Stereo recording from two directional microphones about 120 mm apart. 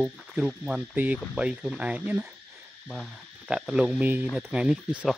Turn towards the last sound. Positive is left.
turn(degrees=-5)  # may be behind; listen again after turning